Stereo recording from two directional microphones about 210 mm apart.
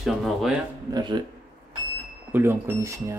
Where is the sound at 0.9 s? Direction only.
20° right (ahead or behind).